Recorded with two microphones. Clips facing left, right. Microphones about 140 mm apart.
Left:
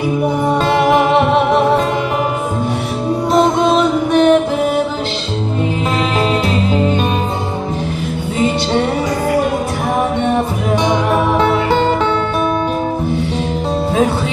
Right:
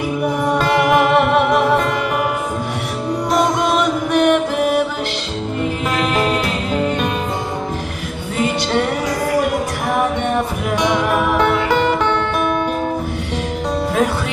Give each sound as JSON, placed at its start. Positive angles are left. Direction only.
{"t": 0.2, "sound": "music", "side_deg": 30}
{"t": 3.3, "sound": "music", "side_deg": 30}
{"t": 6.1, "sound": "music", "side_deg": 30}
{"t": 10.8, "sound": "music", "side_deg": 30}